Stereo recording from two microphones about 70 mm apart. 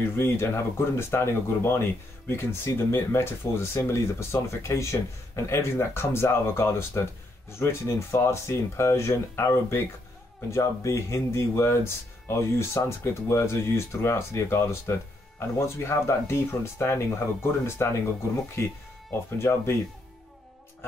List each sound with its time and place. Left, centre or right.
0.2 s speech: left